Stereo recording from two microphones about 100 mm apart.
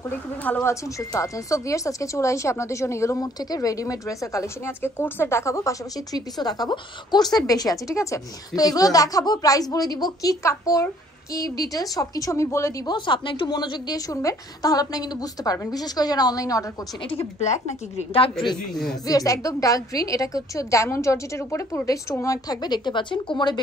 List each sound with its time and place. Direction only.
0.4 s speech: 20° left (ahead or behind)
0.9 s speech: 35° left (ahead or behind)
12.8 s speech: 50° left (ahead or behind); by 16.6 s 35° left (ahead or behind)
17.9 s a woman's voice: 70° left (ahead or behind)
19.0 s speech: 35° left (ahead or behind)